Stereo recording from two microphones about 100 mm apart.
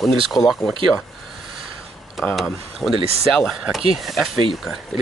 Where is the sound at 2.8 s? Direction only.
20° left (ahead or behind).